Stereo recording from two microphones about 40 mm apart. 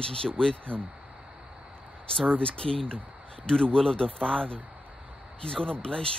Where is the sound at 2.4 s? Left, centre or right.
Left.